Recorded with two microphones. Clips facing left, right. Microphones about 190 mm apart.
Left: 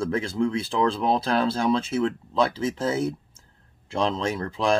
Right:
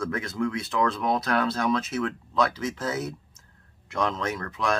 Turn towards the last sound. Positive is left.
turn(degrees=30)  # may be behind; listen again after turning